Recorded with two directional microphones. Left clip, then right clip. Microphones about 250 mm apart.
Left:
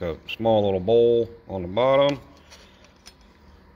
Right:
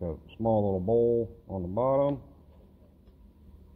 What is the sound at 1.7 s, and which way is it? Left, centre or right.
Speech, centre.